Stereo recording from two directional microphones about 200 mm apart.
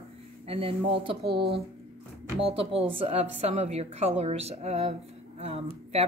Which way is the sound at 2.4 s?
30° right (ahead or behind).